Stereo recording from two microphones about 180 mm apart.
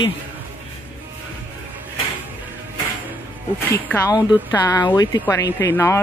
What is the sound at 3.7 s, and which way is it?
Speech, 10° left (ahead or behind).